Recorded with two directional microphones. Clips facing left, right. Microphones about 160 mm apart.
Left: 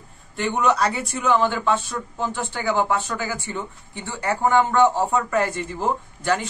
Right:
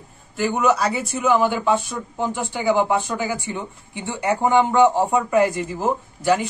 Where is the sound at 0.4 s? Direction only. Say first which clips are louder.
Right 1 dB; 5° right (ahead or behind).